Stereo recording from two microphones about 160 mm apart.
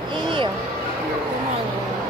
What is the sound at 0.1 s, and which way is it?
Music, 30° right (ahead or behind).